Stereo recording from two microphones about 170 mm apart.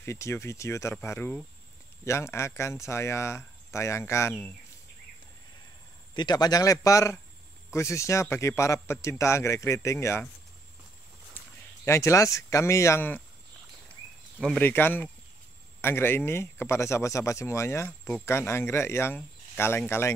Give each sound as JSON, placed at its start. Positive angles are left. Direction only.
{"t": 0.0, "sound": "speech", "side_deg": 15}
{"t": 6.1, "sound": "speech", "side_deg": 25}
{"t": 11.8, "sound": "speech", "side_deg": 15}
{"t": 14.4, "sound": "speech", "side_deg": 10}